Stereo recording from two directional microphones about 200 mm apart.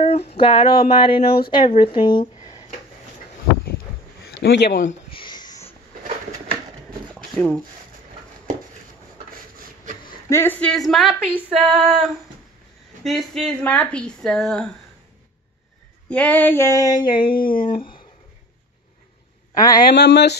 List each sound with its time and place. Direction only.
0.0 s speech: 30° left (ahead or behind)
2.0 s a sound: 25° left (ahead or behind)
4.2 s a sound: 60° left (ahead or behind)
5.1 s a sound: 20° left (ahead or behind)
7.3 s female singing: 5° left (ahead or behind)
10.3 s female singing: 10° left (ahead or behind)
16.1 s female singing: 5° left (ahead or behind); by 17.3 s 25° left (ahead or behind)
17.3 s speech: 45° left (ahead or behind)
17.6 s speech: 25° left (ahead or behind)
19.5 s female singing: 20° left (ahead or behind)
19.9 s speech: 60° left (ahead or behind)